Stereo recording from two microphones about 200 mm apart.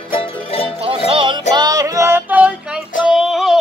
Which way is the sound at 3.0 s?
Centre (ahead or behind).